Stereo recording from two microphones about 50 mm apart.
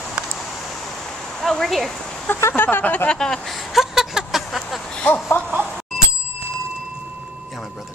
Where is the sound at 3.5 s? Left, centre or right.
Centre.